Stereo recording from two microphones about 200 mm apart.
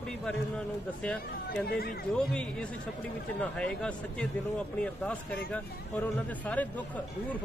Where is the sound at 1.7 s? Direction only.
50° left (ahead or behind).